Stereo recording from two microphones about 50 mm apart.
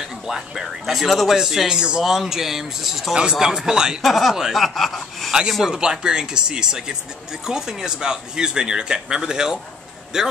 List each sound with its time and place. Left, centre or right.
0.3 s a man's voice: centre
4.0 s speech: centre
5.7 s a man's voice: centre